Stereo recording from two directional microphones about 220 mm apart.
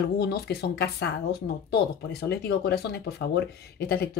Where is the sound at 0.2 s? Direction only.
45° left (ahead or behind).